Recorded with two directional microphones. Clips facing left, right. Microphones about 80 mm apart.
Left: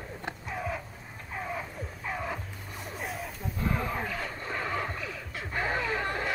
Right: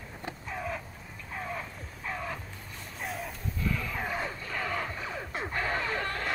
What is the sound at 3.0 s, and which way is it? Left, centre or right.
Wild animals, centre.